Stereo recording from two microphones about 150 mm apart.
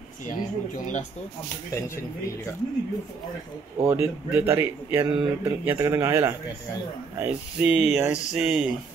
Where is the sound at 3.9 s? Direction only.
15° right (ahead or behind).